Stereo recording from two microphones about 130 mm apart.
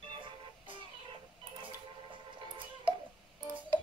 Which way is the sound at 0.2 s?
40° right (ahead or behind).